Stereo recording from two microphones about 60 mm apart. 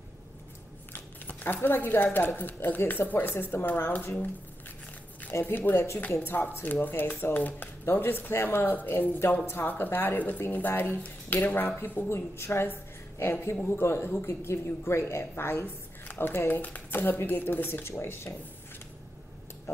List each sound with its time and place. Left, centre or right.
0.9 s a sound: left
2.1 s a woman's voice: left
5.3 s speech: left
6.1 s a woman's voice: left
12.1 s a woman's voice: left